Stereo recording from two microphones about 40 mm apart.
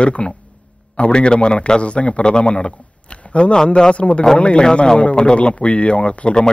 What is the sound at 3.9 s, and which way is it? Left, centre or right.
Speech, left.